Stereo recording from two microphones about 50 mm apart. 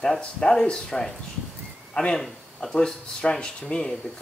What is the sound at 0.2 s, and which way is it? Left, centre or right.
Speech, centre.